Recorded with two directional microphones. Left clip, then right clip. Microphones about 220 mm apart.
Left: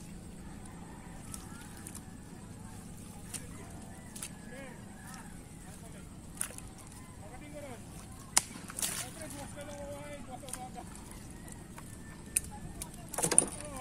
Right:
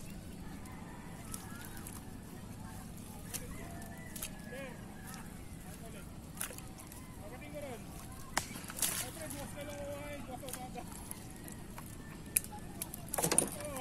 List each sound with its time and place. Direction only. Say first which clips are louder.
8.4 s a sound: left 5 dB; 35° left (ahead or behind)
8.7 s boat: even; centre (ahead or behind)
13.1 s vehicle: left 1 dB; centre (ahead or behind)